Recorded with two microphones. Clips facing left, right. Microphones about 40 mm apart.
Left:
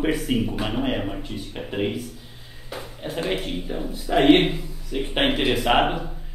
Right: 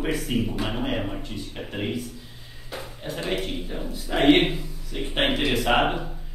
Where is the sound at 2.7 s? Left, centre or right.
Centre.